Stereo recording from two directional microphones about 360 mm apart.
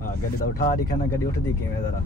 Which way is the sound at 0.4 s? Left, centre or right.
Left.